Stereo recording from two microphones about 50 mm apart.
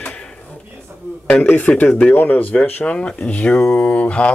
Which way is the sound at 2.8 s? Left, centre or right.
Left.